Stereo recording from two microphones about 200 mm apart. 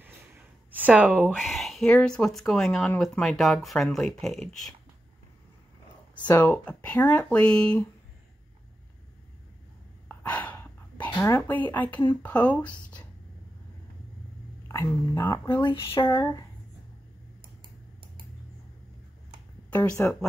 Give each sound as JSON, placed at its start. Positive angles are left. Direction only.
{"t": 0.7, "sound": "speech", "side_deg": -5}
{"t": 6.2, "sound": "speech", "side_deg": 10}
{"t": 10.0, "sound": "a sound", "side_deg": 10}
{"t": 12.1, "sound": "speech", "side_deg": 10}
{"t": 14.7, "sound": "speech", "side_deg": 15}
{"t": 19.7, "sound": "speech", "side_deg": 10}